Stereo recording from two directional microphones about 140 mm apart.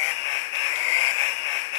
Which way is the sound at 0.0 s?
35° right (ahead or behind).